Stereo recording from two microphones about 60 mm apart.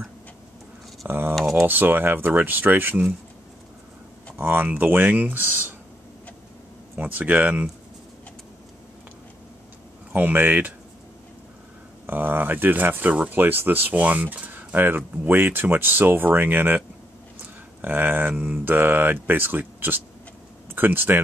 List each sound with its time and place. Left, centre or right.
1.0 s speech: right
4.4 s speech: right
7.0 s speech: right
10.1 s speech: right
12.1 s speech: right
17.8 s speech: right